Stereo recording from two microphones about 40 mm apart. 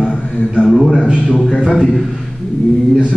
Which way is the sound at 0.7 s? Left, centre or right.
Centre.